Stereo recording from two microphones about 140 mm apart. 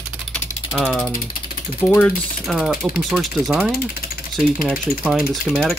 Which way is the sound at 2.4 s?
Centre (ahead or behind).